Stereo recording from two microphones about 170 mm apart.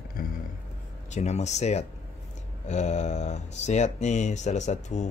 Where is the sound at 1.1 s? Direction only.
40° left (ahead or behind).